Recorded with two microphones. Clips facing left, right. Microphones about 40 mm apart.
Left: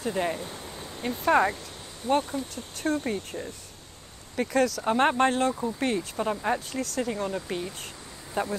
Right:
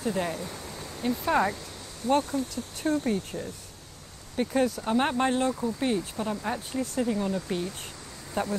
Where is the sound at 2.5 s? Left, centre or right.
Left.